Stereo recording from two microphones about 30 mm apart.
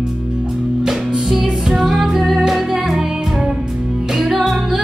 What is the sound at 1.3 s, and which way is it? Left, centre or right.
Music, centre.